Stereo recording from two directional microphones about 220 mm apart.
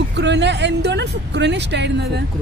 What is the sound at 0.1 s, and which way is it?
Speech, 50° right (ahead or behind).